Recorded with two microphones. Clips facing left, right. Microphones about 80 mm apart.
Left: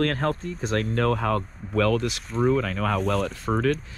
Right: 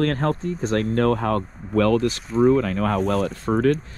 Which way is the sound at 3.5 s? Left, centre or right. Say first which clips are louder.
Right 5 dB; right.